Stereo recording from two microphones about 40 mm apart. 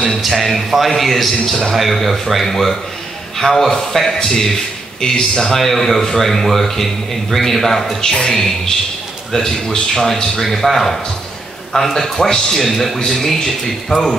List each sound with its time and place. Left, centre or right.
0.2 s a man's voice: centre
8.0 s a man's voice: centre